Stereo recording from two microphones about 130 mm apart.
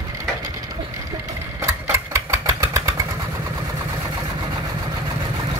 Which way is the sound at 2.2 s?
20° right (ahead or behind).